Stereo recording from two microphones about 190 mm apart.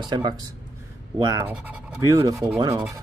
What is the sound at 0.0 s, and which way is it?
Speech, 25° right (ahead or behind).